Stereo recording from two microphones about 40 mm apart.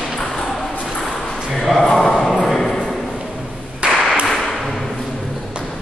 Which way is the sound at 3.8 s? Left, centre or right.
Right.